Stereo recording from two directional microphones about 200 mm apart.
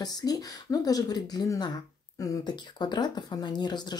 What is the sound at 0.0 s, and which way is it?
Speech, 20° left (ahead or behind).